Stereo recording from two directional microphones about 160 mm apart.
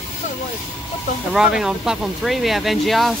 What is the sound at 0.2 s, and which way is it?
Vehicle, 50° left (ahead or behind).